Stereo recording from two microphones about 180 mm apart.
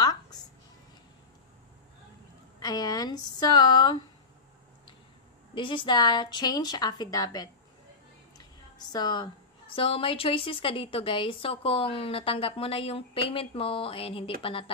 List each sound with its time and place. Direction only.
0.0 s music: 20° left (ahead or behind)
2.6 s a woman's voice: 20° left (ahead or behind)
5.5 s a woman's voice: 25° left (ahead or behind)
8.4 s a sound: 20° left (ahead or behind)
9.8 s a woman's voice: 30° left (ahead or behind)